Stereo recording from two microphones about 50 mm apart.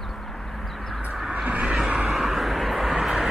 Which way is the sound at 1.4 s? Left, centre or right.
Right.